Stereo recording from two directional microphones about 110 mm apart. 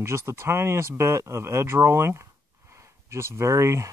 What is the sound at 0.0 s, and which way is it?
Speech, 25° right (ahead or behind).